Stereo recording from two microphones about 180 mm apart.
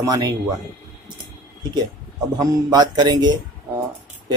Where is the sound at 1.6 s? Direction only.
25° right (ahead or behind).